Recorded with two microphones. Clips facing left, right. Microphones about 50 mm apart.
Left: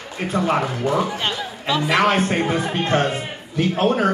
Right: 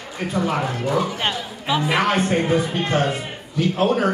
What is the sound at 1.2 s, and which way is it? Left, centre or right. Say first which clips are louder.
Chatter: even; centre.